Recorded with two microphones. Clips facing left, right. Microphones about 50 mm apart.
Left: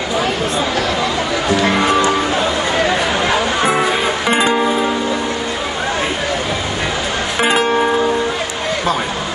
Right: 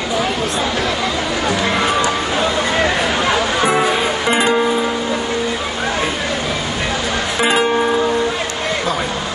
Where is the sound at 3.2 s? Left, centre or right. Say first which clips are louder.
Even; centre.